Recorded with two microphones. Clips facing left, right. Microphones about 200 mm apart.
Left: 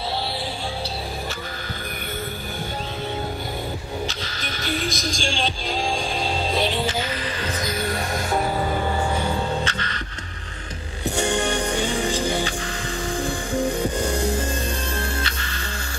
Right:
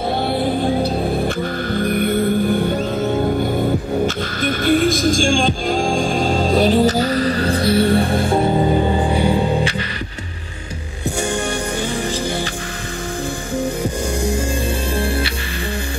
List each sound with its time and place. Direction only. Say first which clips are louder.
1.8 s music: right 17 dB; 55° right (ahead or behind)
4.6 s music: right 11 dB; 50° right (ahead or behind); by 9.8 s 15° right (ahead or behind)